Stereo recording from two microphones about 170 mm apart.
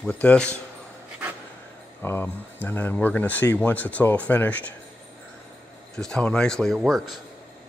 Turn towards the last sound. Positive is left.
turn(degrees=0)  # may be behind; listen again after turning